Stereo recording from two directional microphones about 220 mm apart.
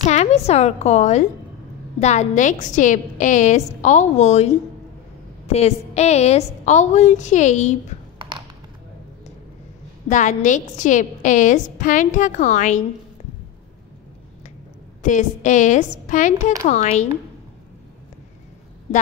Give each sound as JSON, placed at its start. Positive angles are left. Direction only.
{"t": 0.0, "sound": "a woman's voice", "side_deg": 30}
{"t": 5.5, "sound": "a woman's voice", "side_deg": 30}
{"t": 10.0, "sound": "a woman's voice", "side_deg": 35}
{"t": 15.0, "sound": "a woman's voice", "side_deg": 35}